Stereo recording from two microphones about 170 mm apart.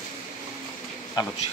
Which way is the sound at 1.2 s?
25° left (ahead or behind).